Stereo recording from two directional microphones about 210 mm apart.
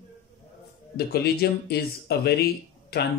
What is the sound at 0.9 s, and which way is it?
Speech, 50° left (ahead or behind).